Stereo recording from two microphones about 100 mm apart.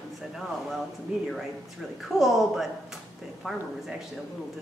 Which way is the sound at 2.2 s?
Centre (ahead or behind).